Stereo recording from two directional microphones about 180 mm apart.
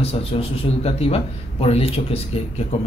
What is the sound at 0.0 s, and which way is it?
A man's voice, 30° left (ahead or behind).